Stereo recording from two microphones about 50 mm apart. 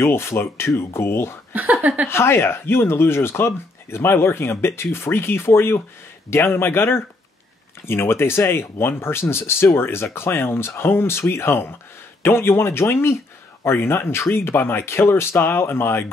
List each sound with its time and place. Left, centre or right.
0.0 s speech: left
1.5 s speech: right
2.0 s speech: left